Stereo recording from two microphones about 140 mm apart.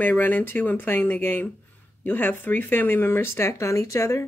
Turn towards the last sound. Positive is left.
turn(degrees=20)  # may be behind; listen again after turning